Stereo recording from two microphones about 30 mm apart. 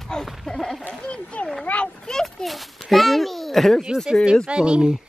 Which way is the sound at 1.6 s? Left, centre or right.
Left.